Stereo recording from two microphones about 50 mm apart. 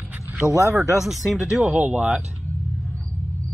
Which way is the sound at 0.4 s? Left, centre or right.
Left.